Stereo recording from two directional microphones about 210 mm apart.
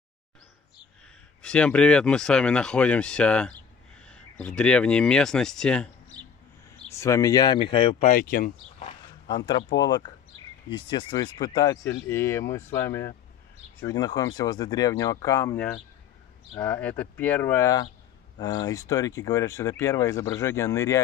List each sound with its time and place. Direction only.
1.4 s speech: 5° left (ahead or behind); by 8.1 s 25° left (ahead or behind)
8.1 s speech: 45° left (ahead or behind)
9.3 s speech: 20° left (ahead or behind)